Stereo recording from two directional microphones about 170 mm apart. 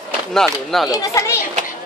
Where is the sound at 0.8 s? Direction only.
20° left (ahead or behind).